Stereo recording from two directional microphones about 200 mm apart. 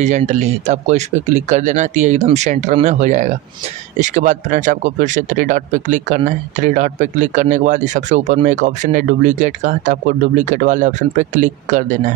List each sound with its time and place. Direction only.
0.0 s speech: 35° right (ahead or behind)